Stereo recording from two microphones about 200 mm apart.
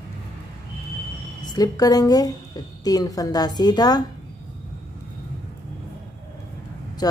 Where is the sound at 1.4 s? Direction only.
20° left (ahead or behind).